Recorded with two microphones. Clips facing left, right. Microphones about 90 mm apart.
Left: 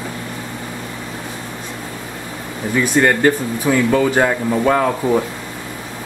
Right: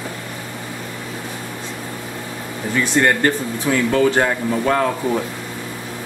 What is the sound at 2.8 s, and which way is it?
Speech, 5° left (ahead or behind).